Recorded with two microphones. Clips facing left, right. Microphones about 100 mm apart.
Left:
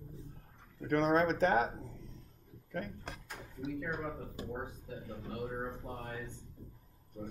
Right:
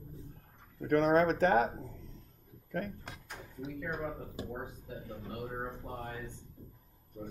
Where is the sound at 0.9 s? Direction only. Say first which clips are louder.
Right 3 dB; 55° right (ahead or behind).